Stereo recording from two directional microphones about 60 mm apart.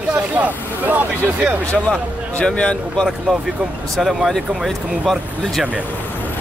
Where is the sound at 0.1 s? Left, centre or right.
Right.